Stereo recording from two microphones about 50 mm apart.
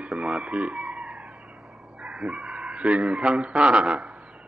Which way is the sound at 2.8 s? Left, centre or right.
Right.